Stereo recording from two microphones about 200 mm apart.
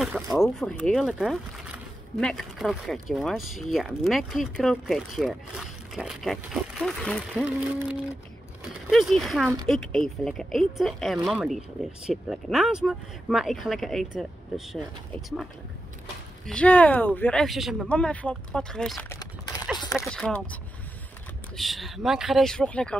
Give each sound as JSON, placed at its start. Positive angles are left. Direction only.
{"t": 0.4, "sound": "speech", "side_deg": 0}
{"t": 16.4, "sound": "speech", "side_deg": 5}
{"t": 19.8, "sound": "speech", "side_deg": 15}
{"t": 20.1, "sound": "speech", "side_deg": 5}
{"t": 21.5, "sound": "speech", "side_deg": 0}